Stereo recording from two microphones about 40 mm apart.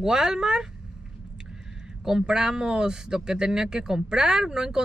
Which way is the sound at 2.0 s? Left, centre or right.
Centre.